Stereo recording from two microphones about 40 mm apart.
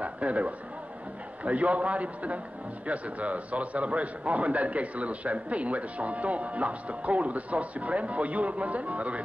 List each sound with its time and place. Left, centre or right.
0.0 s a man's voice: right